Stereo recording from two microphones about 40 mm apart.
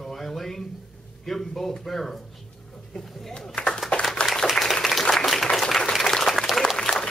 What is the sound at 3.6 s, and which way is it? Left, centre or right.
Speech, left.